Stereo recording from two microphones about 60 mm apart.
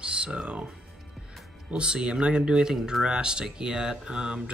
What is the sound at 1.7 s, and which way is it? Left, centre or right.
Speech, centre.